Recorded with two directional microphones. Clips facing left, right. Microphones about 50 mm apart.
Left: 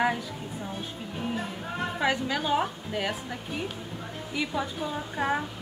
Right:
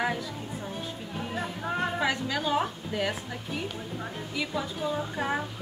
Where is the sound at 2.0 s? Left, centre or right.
Centre.